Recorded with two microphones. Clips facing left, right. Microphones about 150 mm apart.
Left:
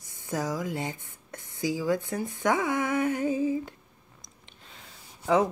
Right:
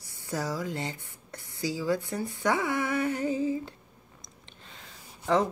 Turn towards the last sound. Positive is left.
turn(degrees=5)  # may be behind; listen again after turning